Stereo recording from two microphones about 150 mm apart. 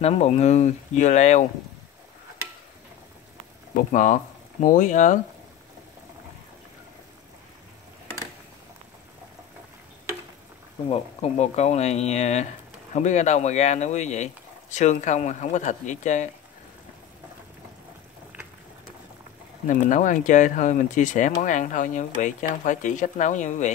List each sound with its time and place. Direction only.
0.0 s speech: 45° left (ahead or behind)
3.7 s speech: 60° left (ahead or behind)
10.9 s speech: 45° left (ahead or behind)
19.6 s speech: 60° left (ahead or behind)